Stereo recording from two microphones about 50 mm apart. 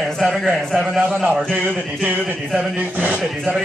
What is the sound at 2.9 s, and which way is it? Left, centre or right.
Speech, right.